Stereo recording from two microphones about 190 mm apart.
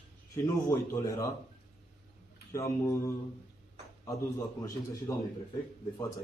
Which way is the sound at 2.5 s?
15° left (ahead or behind).